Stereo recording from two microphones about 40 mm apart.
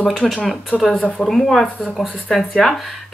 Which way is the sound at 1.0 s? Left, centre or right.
Left.